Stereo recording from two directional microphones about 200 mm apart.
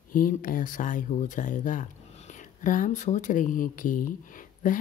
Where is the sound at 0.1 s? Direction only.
45° left (ahead or behind).